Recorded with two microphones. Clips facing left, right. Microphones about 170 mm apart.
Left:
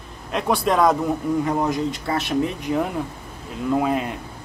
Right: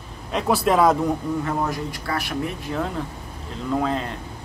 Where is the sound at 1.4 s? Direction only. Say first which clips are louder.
Left 4 dB; 20° left (ahead or behind).